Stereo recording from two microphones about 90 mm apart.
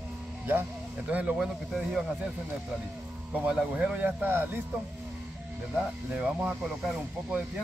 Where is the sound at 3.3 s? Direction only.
15° right (ahead or behind).